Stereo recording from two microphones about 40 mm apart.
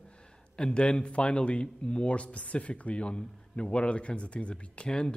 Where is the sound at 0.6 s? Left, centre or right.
Left.